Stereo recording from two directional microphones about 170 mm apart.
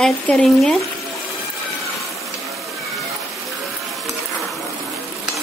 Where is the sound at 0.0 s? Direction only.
5° left (ahead or behind).